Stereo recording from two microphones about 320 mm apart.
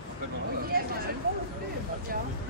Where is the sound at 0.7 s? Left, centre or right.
Right.